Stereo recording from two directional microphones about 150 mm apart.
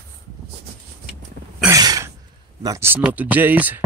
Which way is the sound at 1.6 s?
25° right (ahead or behind).